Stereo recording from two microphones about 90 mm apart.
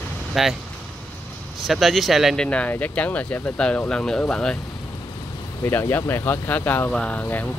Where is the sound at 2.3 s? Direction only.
15° left (ahead or behind).